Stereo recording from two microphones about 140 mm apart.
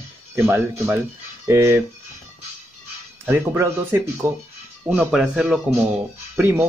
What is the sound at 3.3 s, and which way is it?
Speech, 20° right (ahead or behind).